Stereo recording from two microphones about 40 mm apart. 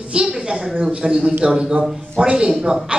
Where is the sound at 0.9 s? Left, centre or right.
Right.